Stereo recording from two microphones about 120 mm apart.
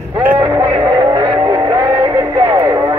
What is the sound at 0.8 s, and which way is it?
Music, 35° right (ahead or behind).